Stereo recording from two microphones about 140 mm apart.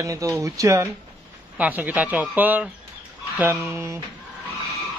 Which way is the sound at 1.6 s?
10° right (ahead or behind).